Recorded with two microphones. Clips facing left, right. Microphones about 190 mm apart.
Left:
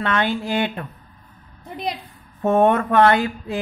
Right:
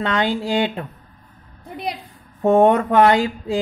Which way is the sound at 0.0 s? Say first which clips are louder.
Right 1 dB; 20° right (ahead or behind).